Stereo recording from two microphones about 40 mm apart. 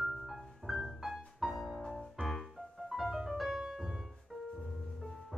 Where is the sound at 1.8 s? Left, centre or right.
Centre.